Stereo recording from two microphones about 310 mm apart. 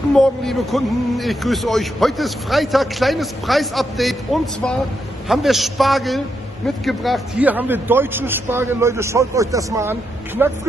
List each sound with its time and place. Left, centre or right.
0.1 s a man's voice: centre